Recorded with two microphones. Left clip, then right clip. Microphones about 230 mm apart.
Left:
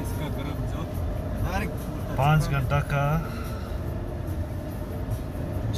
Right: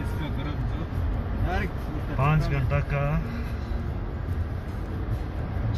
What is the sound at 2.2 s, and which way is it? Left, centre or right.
Speech, centre.